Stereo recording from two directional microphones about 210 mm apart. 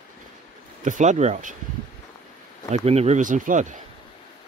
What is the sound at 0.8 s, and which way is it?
Speech, 35° right (ahead or behind).